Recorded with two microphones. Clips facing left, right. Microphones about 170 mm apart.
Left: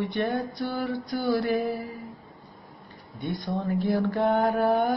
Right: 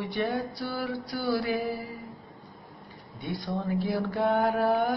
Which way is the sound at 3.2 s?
Centre (ahead or behind).